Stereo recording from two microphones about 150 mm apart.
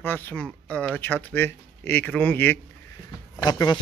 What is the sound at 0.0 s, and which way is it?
Speech, 15° left (ahead or behind).